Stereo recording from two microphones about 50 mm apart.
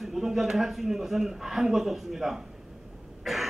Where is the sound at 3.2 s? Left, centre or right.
Centre.